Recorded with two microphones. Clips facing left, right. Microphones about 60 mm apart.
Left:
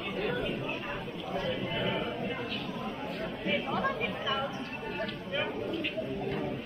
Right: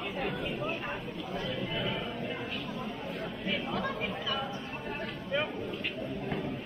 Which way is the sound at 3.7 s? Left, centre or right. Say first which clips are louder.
Left 2 dB; left.